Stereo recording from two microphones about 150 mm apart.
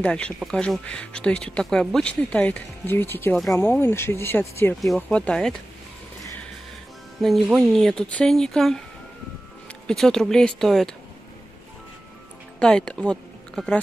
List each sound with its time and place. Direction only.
0.0 s speech: 5° left (ahead or behind)
7.2 s speech: centre (ahead or behind)
9.8 s speech: 5° left (ahead or behind)
12.5 s speech: 5° left (ahead or behind)